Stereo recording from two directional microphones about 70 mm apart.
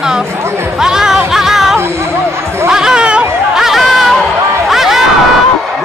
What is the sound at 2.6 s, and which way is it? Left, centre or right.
Chatter, centre.